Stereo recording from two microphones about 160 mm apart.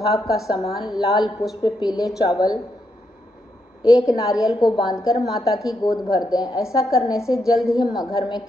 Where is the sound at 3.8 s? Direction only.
20° left (ahead or behind).